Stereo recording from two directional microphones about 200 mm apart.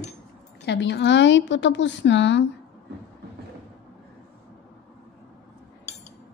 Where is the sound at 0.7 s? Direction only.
60° left (ahead or behind).